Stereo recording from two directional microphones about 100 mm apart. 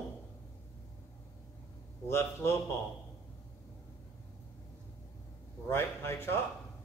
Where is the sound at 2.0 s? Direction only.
25° left (ahead or behind).